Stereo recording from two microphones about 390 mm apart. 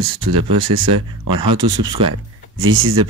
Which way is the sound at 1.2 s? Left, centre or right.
Right.